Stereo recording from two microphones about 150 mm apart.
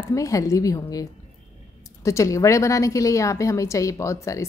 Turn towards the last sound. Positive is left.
turn(degrees=20)  # may be behind; listen again after turning